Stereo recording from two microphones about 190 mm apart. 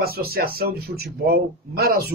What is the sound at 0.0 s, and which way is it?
Speech, 55° right (ahead or behind).